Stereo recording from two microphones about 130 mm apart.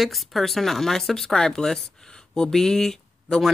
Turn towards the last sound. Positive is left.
turn(degrees=5)  # may be behind; listen again after turning